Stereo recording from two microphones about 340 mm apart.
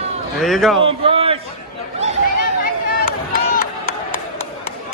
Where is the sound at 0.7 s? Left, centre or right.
Centre.